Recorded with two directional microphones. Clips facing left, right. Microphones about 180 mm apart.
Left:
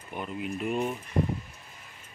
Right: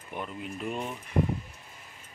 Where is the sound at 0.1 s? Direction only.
5° left (ahead or behind).